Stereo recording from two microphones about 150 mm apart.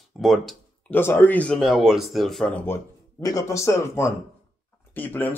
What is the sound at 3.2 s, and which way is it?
A man's voice, 20° left (ahead or behind).